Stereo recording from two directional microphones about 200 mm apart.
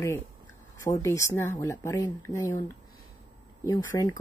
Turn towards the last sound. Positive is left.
turn(degrees=15)  # may be behind; listen again after turning